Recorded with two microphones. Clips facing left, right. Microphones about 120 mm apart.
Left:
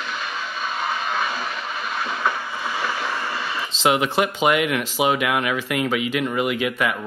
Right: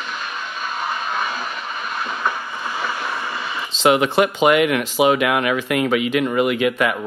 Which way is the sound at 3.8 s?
5° left (ahead or behind).